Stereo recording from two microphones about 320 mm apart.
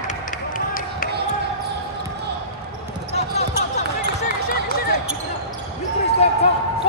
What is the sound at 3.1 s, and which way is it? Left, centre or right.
Basketball bounce, centre.